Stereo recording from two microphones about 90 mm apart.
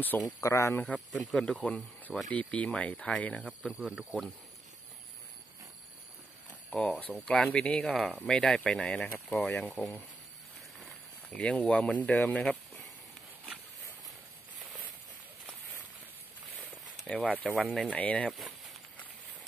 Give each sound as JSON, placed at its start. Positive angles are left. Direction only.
{"t": 0.2, "sound": "speech", "side_deg": 35}
{"t": 0.8, "sound": "speech", "side_deg": 5}
{"t": 3.6, "sound": "speech", "side_deg": -10}
{"t": 6.7, "sound": "speech", "side_deg": 5}
{"t": 11.2, "sound": "speech", "side_deg": 15}
{"t": 17.1, "sound": "speech", "side_deg": 15}